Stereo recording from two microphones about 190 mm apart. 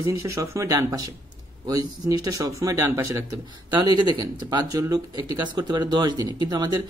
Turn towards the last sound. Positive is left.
turn(degrees=-20)  # may be behind; listen again after turning